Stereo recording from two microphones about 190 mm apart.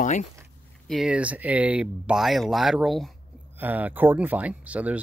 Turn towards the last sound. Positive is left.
turn(degrees=-5)  # may be behind; listen again after turning